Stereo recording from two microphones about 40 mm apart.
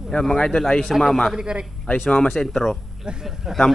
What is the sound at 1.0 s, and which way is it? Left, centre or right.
Speech, centre.